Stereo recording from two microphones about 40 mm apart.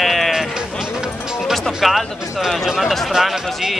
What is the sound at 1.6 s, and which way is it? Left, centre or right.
Speech, centre.